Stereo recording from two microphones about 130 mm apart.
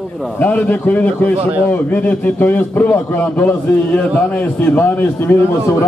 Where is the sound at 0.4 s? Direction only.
10° left (ahead or behind).